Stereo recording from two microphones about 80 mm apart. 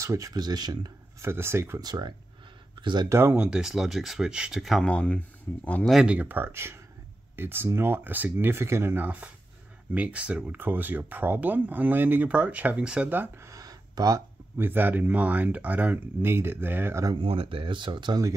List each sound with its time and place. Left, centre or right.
0.0 s speech: right
0.3 s speech: right
1.2 s speech: right
1.8 s speech: right
2.8 s speech: right
3.1 s speech: right
3.3 s speech: centre
4.8 s speech: centre
6.0 s speech: centre
13.4 s a sound: right
14.6 s speech: right
17.1 s speech: right